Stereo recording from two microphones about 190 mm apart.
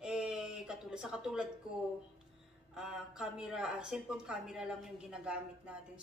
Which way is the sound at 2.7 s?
5° right (ahead or behind).